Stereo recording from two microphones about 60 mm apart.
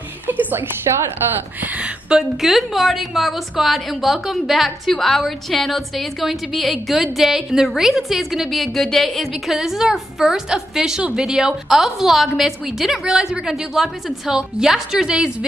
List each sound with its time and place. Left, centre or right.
0.3 s a sound: right
0.9 s a woman's voice: right
1.6 s speech: right
2.0 s a woman's voice: centre
2.5 s a woman's voice: centre